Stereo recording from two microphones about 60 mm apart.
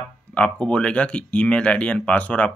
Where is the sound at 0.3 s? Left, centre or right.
Centre.